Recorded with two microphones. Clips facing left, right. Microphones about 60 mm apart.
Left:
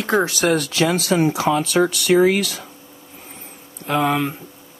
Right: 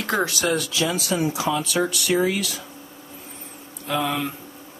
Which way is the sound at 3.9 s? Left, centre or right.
Left.